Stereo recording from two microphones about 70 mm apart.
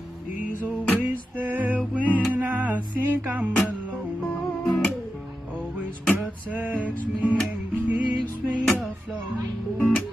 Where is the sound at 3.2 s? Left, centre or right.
Right.